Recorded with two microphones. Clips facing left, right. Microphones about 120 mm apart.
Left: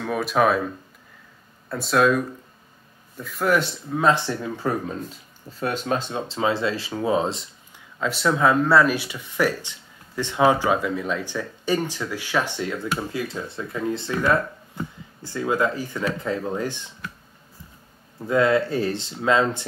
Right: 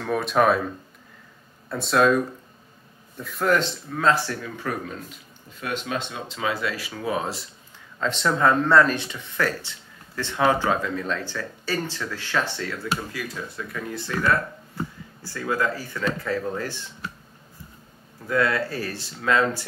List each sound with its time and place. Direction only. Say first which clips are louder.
0.0 s speech: even; centre (ahead or behind)
1.7 s speech: even; centre (ahead or behind); by 7.4 s 25° left (ahead or behind)
8.0 s speech: left 1 dB; 5° left (ahead or behind)
18.2 s speech: left 4 dB; 25° left (ahead or behind)